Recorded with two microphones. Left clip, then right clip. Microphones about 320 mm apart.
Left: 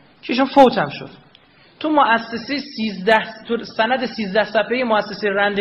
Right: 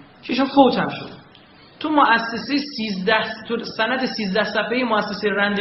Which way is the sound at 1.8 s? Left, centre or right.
Left.